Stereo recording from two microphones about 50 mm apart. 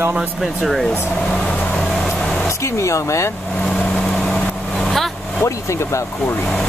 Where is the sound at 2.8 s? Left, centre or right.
Left.